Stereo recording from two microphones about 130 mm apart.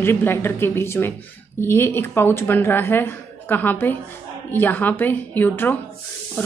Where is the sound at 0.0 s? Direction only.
15° left (ahead or behind).